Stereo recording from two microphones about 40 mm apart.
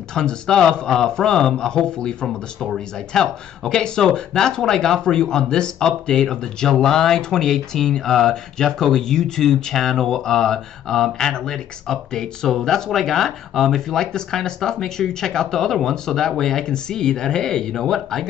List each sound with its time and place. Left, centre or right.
0.1 s speech: centre
2.2 s speech: centre
17.8 s speech: centre